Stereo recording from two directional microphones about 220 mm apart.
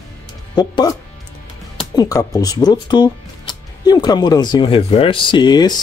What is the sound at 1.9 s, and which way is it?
Speech, 15° left (ahead or behind).